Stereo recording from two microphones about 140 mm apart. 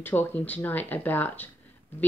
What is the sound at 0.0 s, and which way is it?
Speech, 15° left (ahead or behind).